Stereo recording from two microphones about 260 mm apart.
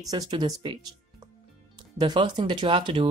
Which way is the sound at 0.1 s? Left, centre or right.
Centre.